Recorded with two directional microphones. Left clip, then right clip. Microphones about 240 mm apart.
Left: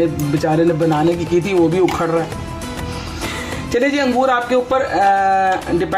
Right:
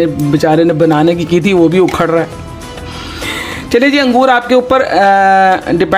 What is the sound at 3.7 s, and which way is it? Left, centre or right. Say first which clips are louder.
A man's voice: right 7 dB; right.